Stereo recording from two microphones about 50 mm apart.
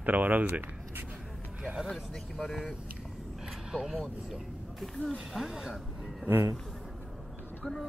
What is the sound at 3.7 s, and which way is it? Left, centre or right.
Speech, centre.